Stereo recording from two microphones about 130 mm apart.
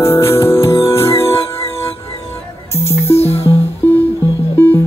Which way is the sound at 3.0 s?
20° left (ahead or behind).